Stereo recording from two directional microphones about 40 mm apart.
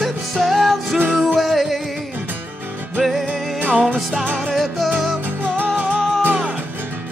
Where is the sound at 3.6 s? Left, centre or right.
Right.